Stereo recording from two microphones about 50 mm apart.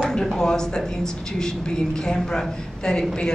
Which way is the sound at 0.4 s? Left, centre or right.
Centre.